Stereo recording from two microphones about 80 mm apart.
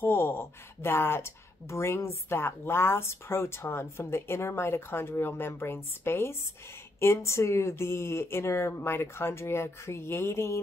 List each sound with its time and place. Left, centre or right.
0.0 s speech: left